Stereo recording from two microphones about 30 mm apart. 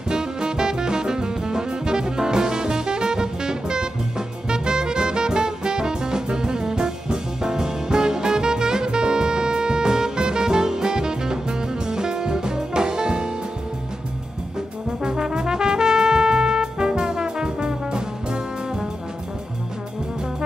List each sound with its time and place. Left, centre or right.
0.1 s music: right
14.9 s brass instrument: right
15.3 s trumpet: right